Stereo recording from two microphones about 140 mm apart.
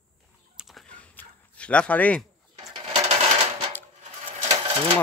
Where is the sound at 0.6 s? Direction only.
Centre (ahead or behind).